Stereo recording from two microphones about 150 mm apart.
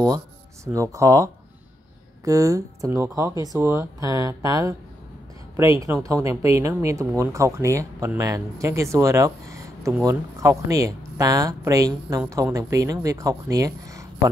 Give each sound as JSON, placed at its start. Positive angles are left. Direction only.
{"t": 0.7, "sound": "speech", "side_deg": -20}
{"t": 6.0, "sound": "speech", "side_deg": -20}